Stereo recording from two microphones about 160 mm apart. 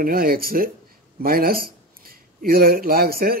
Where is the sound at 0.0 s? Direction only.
65° right (ahead or behind).